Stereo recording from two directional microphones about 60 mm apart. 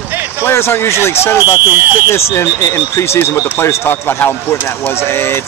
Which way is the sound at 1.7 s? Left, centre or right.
Right.